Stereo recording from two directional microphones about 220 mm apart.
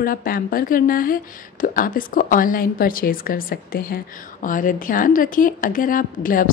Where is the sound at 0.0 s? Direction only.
40° left (ahead or behind).